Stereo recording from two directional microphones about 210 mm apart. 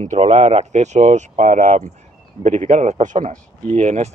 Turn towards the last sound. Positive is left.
turn(degrees=-35)  # may be behind; listen again after turning